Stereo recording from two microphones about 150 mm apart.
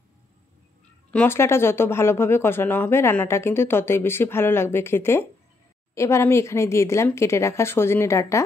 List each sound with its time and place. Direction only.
1.1 s speech: 15° left (ahead or behind)